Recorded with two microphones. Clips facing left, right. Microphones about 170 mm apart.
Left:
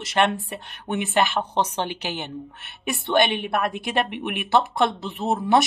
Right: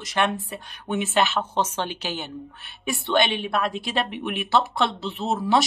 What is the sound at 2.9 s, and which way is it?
Speech, 55° left (ahead or behind).